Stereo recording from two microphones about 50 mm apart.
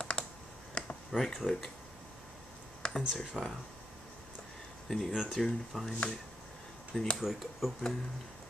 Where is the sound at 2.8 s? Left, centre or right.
Centre.